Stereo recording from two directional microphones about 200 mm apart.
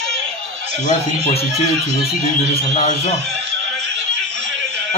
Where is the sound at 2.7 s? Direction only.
35° left (ahead or behind).